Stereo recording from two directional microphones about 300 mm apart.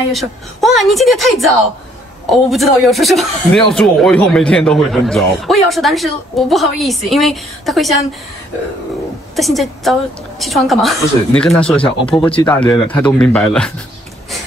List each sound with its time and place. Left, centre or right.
0.1 s speech: centre
9.3 s speech: centre
11.8 s speech: centre
12.4 s speech: centre